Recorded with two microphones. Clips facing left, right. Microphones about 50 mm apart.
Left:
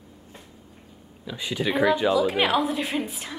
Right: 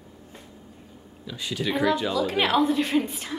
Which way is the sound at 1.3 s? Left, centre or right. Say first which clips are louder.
Left 2 dB; centre.